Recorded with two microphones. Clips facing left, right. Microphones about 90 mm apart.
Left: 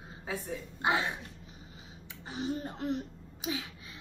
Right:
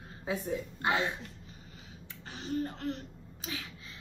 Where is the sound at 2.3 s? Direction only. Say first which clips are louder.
Even; 15° left (ahead or behind).